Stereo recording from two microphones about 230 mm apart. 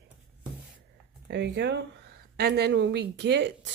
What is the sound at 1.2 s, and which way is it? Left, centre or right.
A woman's voice, right.